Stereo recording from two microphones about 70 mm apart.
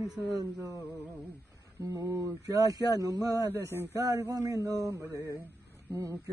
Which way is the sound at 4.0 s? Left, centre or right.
Right.